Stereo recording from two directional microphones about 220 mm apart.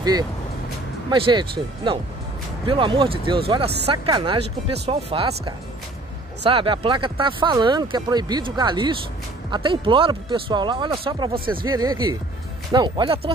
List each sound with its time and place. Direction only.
1.1 s speech: 25° right (ahead or behind)
2.6 s speech: 20° right (ahead or behind)
6.4 s speech: 25° right (ahead or behind)